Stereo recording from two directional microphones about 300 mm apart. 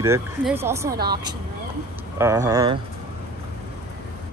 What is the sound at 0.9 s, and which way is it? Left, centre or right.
Speech, right.